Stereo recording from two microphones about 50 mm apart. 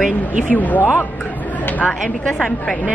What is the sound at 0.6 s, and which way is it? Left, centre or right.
Speech, left.